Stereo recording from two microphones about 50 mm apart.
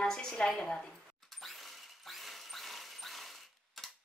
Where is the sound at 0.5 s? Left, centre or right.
Centre.